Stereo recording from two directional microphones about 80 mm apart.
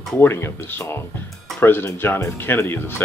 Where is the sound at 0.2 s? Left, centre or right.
Left.